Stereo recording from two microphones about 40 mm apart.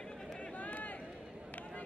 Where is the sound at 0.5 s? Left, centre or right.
Left.